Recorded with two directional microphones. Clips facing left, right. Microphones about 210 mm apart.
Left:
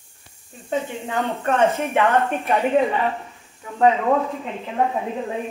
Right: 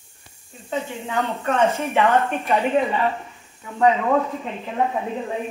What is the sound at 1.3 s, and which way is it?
Speech, 15° left (ahead or behind).